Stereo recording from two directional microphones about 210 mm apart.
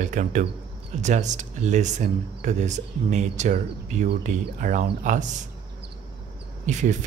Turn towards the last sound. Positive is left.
turn(degrees=-35)  # may be behind; listen again after turning